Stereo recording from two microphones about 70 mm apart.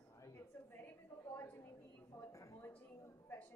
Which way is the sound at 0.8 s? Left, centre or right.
Left.